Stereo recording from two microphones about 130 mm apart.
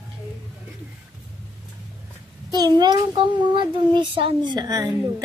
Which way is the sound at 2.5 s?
30° right (ahead or behind).